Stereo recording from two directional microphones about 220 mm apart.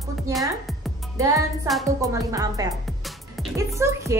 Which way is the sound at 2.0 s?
15° right (ahead or behind).